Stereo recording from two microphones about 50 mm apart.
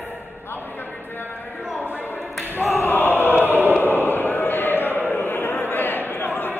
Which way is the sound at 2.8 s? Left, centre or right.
Left.